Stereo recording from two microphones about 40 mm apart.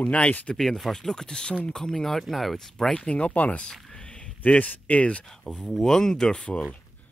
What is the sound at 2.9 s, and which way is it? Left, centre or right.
Speech, left.